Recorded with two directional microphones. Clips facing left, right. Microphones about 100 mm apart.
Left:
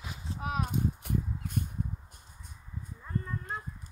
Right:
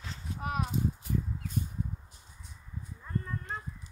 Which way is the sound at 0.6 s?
55° left (ahead or behind).